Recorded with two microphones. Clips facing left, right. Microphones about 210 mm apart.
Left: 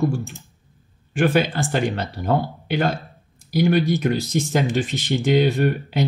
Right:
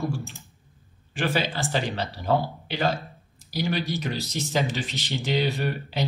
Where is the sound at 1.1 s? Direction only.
55° left (ahead or behind).